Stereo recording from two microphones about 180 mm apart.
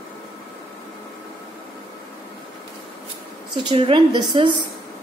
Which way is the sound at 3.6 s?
30° right (ahead or behind).